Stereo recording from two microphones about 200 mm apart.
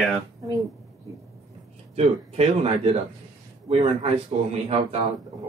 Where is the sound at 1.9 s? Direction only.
30° right (ahead or behind).